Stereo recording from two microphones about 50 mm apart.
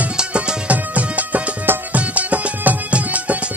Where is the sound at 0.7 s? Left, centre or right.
Right.